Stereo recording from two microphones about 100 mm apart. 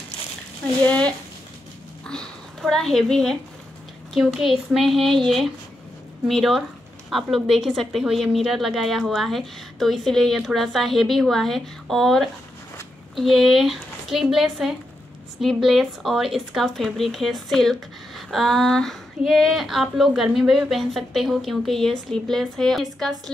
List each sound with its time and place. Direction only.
0.8 s speech: 10° left (ahead or behind)
2.0 s a sound: 5° left (ahead or behind)
4.1 s speech: centre (ahead or behind)